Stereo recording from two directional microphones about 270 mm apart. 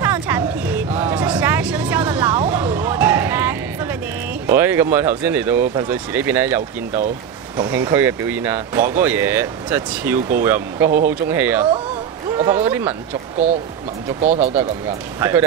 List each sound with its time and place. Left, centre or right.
0.0 s a sound: centre
1.1 s vehicle: centre
1.4 s vehicle: centre
2.1 s a sound: centre
4.5 s speech: centre
14.2 s speech: right
15.1 s speech: centre